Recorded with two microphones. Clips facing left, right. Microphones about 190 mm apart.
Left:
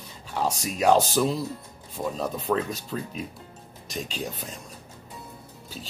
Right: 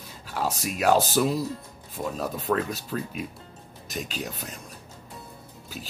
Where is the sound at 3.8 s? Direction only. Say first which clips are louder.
Even; 5° right (ahead or behind).